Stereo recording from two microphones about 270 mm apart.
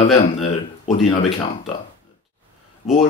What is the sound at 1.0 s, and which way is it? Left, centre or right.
Speech, centre.